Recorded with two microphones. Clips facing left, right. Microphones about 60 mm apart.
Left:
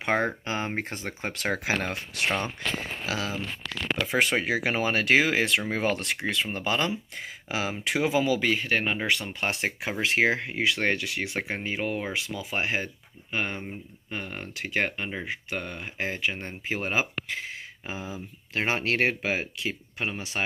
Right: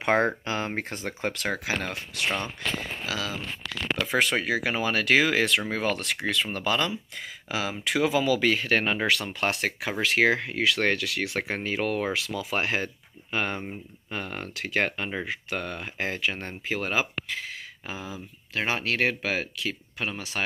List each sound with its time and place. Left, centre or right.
0.0 s speech: centre
0.5 s speech: centre
1.6 s speech: left
3.1 s speech: left
18.5 s speech: left